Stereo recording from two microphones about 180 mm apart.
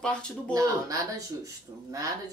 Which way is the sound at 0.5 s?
20° right (ahead or behind).